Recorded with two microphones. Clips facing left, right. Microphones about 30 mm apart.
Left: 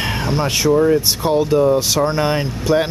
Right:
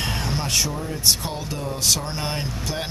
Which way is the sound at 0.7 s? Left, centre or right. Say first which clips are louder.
Left 17 dB; left.